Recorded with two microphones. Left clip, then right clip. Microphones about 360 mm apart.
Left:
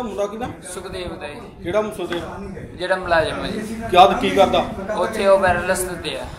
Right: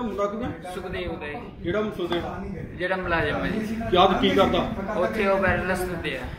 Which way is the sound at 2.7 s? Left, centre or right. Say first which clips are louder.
Left 7 dB; centre.